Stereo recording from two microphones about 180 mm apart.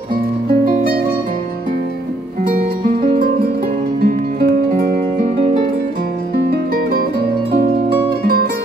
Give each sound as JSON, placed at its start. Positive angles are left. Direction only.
{"t": 0.5, "sound": "music", "side_deg": -50}
{"t": 4.0, "sound": "music", "side_deg": -60}
{"t": 6.5, "sound": "music", "side_deg": -55}